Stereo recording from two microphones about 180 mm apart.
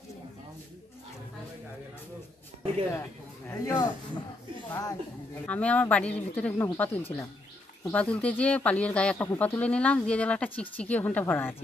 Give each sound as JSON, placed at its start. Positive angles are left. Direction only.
{"t": 3.4, "sound": "speech", "side_deg": 15}